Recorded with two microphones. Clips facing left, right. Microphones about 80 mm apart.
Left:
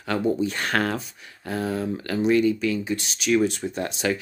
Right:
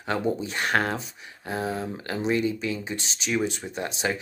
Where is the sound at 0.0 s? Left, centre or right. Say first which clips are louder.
Left 3 dB; centre.